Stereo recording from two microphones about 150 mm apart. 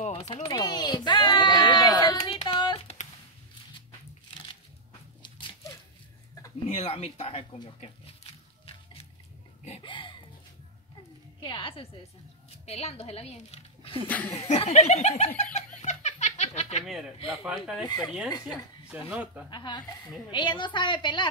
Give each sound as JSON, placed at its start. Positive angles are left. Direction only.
{"t": 0.1, "sound": "speech", "side_deg": 35}
{"t": 0.5, "sound": "a sound", "side_deg": 25}
{"t": 6.7, "sound": "speech", "side_deg": 40}
{"t": 7.5, "sound": "a woman's voice", "side_deg": 30}
{"t": 8.2, "sound": "music", "side_deg": 40}
{"t": 9.7, "sound": "a sound", "side_deg": 35}
{"t": 11.4, "sound": "music", "side_deg": 35}
{"t": 12.6, "sound": "a woman's voice", "side_deg": 45}
{"t": 14.0, "sound": "speech", "side_deg": 10}
{"t": 14.5, "sound": "a sound", "side_deg": 50}
{"t": 17.4, "sound": "speech", "side_deg": -5}
{"t": 17.8, "sound": "speech", "side_deg": 25}
{"t": 19.0, "sound": "speech", "side_deg": -10}
{"t": 19.5, "sound": "a woman's voice", "side_deg": 30}